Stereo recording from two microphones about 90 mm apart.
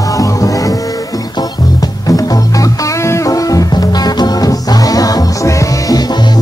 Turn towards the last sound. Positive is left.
turn(degrees=40)  # may be behind; listen again after turning